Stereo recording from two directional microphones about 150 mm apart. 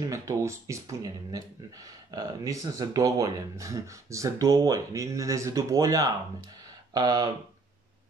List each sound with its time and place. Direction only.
0.0 s speech: 20° right (ahead or behind)